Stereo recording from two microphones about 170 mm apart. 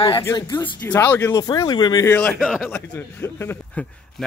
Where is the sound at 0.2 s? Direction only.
20° left (ahead or behind).